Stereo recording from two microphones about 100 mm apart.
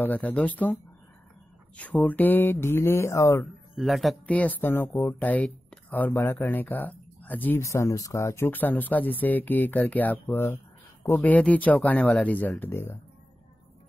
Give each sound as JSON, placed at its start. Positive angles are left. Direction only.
{"t": 0.0, "sound": "speech", "side_deg": 15}
{"t": 2.0, "sound": "music", "side_deg": 15}
{"t": 3.7, "sound": "speech", "side_deg": 0}
{"t": 4.3, "sound": "music", "side_deg": 15}
{"t": 5.0, "sound": "speech", "side_deg": 15}
{"t": 6.1, "sound": "music", "side_deg": 25}
{"t": 6.4, "sound": "speech", "side_deg": 15}
{"t": 7.6, "sound": "speech", "side_deg": 30}
{"t": 8.5, "sound": "speech", "side_deg": 20}